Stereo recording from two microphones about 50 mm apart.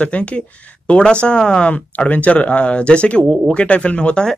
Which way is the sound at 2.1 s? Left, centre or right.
Left.